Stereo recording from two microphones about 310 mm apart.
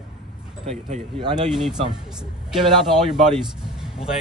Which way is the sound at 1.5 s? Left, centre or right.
Centre.